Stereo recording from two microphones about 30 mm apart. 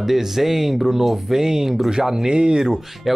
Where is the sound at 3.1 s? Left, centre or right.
Centre.